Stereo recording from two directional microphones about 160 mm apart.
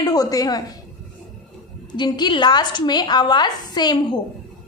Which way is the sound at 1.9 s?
25° left (ahead or behind).